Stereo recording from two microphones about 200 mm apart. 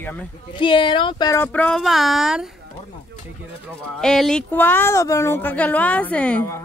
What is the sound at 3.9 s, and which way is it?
Speech, centre (ahead or behind).